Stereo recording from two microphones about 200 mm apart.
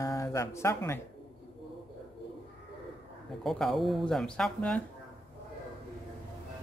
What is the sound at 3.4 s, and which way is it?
Speech, centre (ahead or behind).